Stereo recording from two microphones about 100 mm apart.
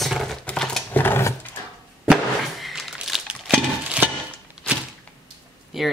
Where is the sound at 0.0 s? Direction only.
Centre (ahead or behind).